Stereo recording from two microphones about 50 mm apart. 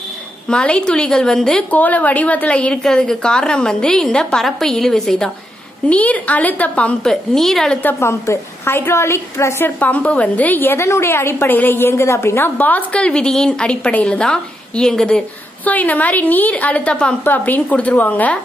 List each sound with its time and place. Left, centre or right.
0.5 s a woman's voice: centre
1.7 s a woman's voice: left
2.7 s a woman's voice: centre
5.9 s a woman's voice: left
7.1 s a woman's voice: centre
8.0 s a woman's voice: left
9.8 s a woman's voice: left
10.6 s a woman's voice: left
12.1 s a woman's voice: left
12.5 s a woman's voice: left
13.0 s a woman's voice: left
15.6 s a woman's voice: left